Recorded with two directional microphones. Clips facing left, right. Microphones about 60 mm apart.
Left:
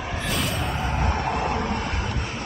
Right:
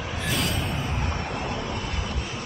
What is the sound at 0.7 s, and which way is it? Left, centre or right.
Vehicle, left.